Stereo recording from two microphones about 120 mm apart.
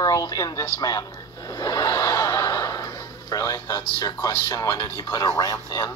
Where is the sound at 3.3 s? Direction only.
30° left (ahead or behind).